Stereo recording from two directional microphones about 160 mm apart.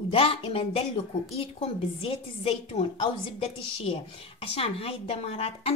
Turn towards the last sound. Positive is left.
turn(degrees=40)  # may be behind; listen again after turning